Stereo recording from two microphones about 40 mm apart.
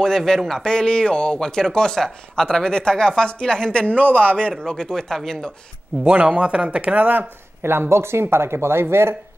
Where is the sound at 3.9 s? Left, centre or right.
Right.